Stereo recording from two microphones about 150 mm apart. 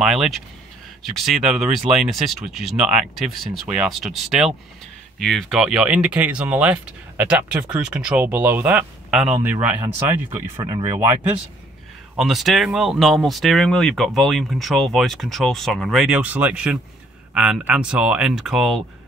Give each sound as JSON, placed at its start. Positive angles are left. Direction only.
{"t": 0.0, "sound": "speech", "side_deg": 0}
{"t": 10.5, "sound": "speech", "side_deg": -30}
{"t": 12.2, "sound": "speech", "side_deg": 0}